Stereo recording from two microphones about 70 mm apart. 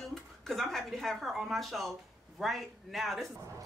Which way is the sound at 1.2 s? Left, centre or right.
Centre.